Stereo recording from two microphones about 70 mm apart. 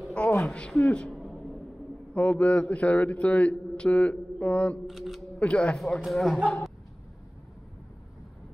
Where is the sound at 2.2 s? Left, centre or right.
Centre.